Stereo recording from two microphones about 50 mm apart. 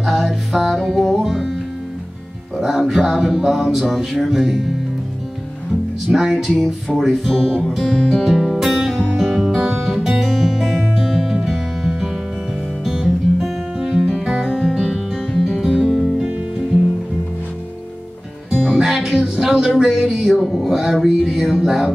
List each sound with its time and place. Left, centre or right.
0.0 s music: centre
0.7 s music: centre
1.1 s music: centre
2.7 s speech: centre
3.0 s music: centre
6.0 s music: centre
15.6 s music: centre
15.9 s music: centre
18.8 s music: centre
20.3 s music: centre
20.7 s music: centre